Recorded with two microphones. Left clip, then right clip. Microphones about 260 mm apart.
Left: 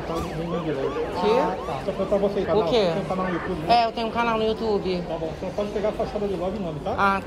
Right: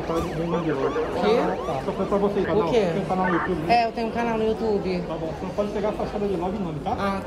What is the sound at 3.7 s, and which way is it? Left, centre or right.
Speech, left.